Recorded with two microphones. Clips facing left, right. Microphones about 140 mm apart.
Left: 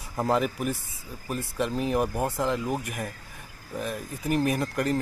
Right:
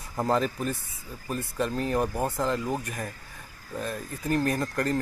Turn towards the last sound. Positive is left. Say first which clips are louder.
# left 1 dB
turn(degrees=15)  # may be behind; listen again after turning